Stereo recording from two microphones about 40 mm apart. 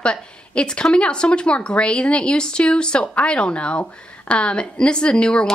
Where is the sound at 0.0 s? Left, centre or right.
Left.